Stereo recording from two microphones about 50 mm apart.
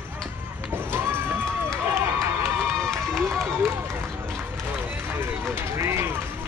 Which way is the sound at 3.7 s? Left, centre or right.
Right.